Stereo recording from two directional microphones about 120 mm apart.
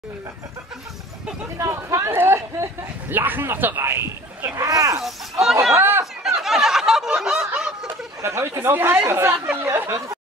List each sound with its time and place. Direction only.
1.6 s speech: 25° right (ahead or behind)
5.0 s speech: centre (ahead or behind)
5.6 s chatter: 20° right (ahead or behind)
6.4 s a sound: centre (ahead or behind)
7.8 s speech: 25° right (ahead or behind)